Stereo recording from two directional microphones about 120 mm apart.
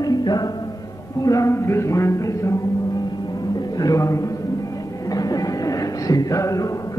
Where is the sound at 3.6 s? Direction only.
30° left (ahead or behind).